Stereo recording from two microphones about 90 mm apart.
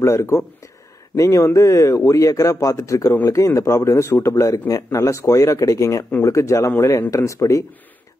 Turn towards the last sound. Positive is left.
turn(degrees=35)  # may be behind; listen again after turning